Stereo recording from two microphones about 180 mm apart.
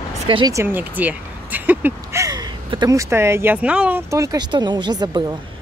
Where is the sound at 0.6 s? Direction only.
10° right (ahead or behind).